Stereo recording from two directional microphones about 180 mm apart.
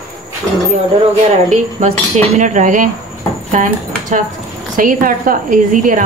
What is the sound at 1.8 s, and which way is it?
A woman's voice, 45° right (ahead or behind).